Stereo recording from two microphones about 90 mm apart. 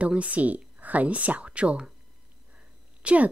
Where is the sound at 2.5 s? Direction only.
15° right (ahead or behind).